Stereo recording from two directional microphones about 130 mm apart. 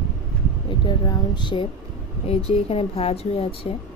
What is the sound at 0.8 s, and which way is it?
Speech, 35° left (ahead or behind).